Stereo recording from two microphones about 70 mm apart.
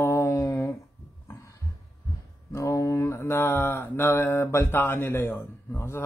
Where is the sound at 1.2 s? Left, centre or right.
Left.